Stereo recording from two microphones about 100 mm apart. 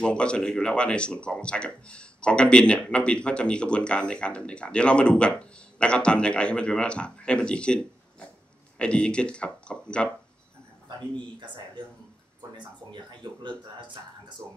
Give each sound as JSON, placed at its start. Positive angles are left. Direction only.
{"t": 0.0, "sound": "speech", "side_deg": 10}
{"t": 11.3, "sound": "speech", "side_deg": -50}
{"t": 12.5, "sound": "a sound", "side_deg": -50}